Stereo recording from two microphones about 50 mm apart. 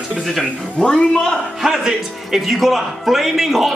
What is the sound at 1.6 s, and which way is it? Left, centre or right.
Speech, centre.